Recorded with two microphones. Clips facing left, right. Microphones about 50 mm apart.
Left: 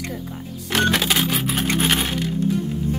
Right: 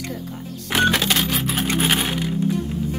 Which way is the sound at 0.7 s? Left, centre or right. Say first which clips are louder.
Right 1 dB; centre.